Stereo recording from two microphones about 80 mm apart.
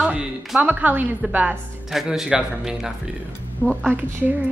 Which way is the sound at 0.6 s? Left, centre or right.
Right.